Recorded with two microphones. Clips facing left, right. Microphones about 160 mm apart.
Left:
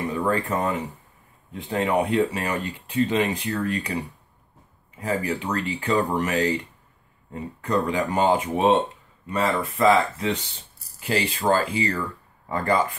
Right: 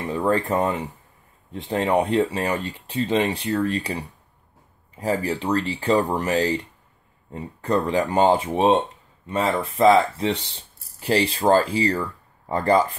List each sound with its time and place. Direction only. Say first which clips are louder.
0.1 s speech: right 6 dB; 30° right (ahead or behind)
4.9 s speech: right 2 dB; 35° right (ahead or behind)